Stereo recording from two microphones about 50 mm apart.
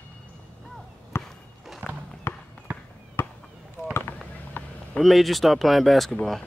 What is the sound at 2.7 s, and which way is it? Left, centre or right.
Basketball bounce, right.